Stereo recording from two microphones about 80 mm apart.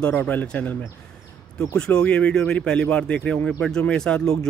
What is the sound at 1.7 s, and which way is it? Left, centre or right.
Speech, centre.